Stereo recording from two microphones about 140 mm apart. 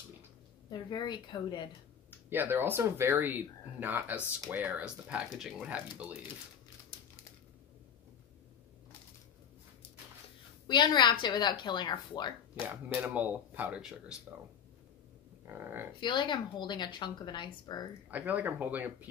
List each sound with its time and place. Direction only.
0.7 s a woman's voice: 30° left (ahead or behind)
2.0 s speech: 15° right (ahead or behind)
10.7 s a woman's voice: 35° left (ahead or behind)
12.6 s speech: 10° right (ahead or behind)
15.4 s speech: 15° right (ahead or behind)
16.0 s a woman's voice: 35° left (ahead or behind)
18.1 s speech: 10° right (ahead or behind)